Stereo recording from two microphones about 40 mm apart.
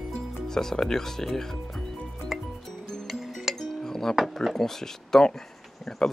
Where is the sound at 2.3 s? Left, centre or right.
Centre.